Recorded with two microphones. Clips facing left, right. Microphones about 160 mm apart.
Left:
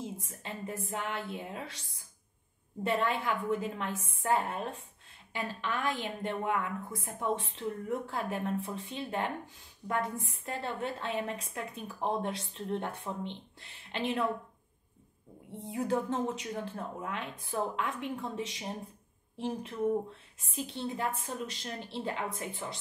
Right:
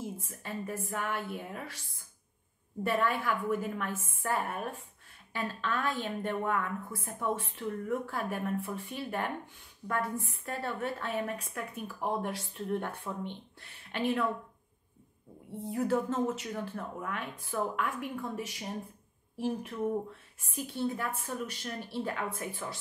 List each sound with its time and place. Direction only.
0.0 s a woman's voice: 20° left (ahead or behind)
2.8 s a woman's voice: 20° left (ahead or behind)
15.6 s a woman's voice: 20° left (ahead or behind)